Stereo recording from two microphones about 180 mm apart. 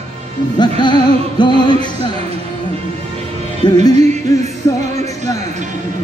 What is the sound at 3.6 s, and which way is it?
Music, 25° left (ahead or behind).